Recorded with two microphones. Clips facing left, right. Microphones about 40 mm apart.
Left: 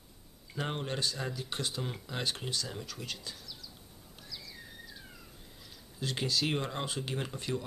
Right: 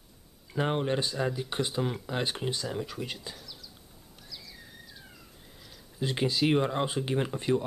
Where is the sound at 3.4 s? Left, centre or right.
Centre.